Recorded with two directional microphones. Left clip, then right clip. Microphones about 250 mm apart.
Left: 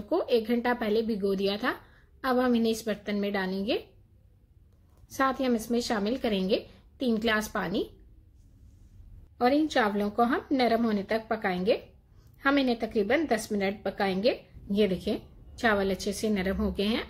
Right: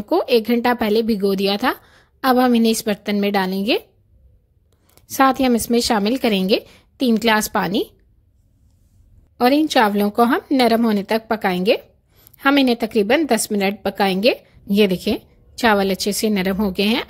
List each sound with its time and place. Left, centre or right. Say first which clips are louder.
0.1 s a woman's voice: right 10 dB; right
5.0 s a woman's voice: right 11 dB; right
9.4 s a woman's voice: right 10 dB; right